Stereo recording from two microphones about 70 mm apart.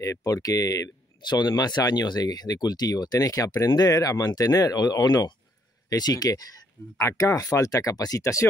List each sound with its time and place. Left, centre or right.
0.0 s speech: left
1.6 s speech: left
4.7 s speech: left
7.0 s speech: left
8.2 s speech: left